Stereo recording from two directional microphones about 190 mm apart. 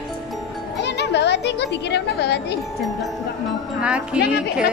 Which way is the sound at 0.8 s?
65° left (ahead or behind).